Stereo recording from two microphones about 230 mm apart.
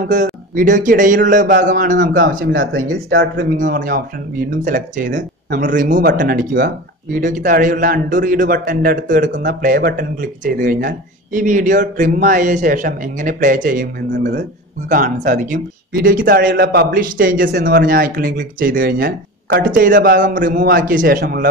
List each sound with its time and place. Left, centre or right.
0.1 s speech: right
2.2 s speech: right
2.7 s speech: right